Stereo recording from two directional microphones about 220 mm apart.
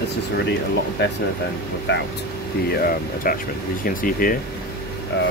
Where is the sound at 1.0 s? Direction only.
50° left (ahead or behind).